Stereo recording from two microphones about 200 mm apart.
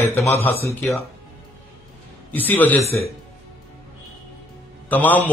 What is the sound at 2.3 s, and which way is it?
Speech, 10° left (ahead or behind).